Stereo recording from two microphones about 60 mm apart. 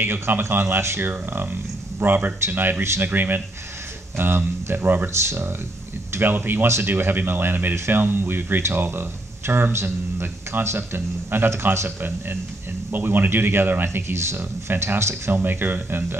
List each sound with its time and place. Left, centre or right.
0.0 s speech: right
1.0 s speech: right
5.2 s a man's voice: right
6.1 s speech: right
7.7 s a man's voice: right
8.0 s a man's voice: right
12.9 s speech: right
13.8 s a man's voice: right
15.3 s speech: right